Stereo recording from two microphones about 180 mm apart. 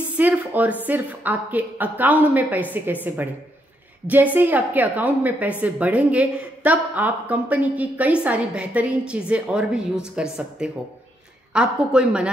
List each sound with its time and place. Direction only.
0.2 s a woman's voice: 10° right (ahead or behind)